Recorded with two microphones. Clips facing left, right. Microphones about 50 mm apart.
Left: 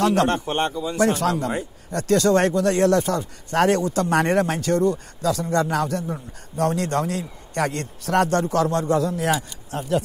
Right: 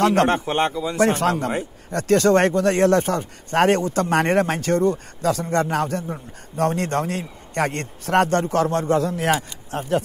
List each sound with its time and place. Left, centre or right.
0.0 s a man's voice: right
0.5 s a man's voice: right
0.9 s speech: right